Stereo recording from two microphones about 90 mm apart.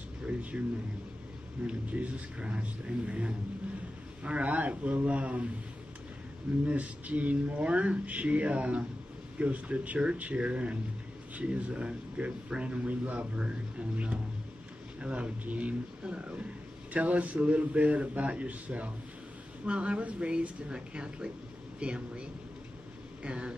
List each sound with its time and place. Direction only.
0.3 s speech: 15° right (ahead or behind)
1.6 s speech: 15° right (ahead or behind)
6.6 s speech: 15° right (ahead or behind)
23.2 s speech: 15° right (ahead or behind)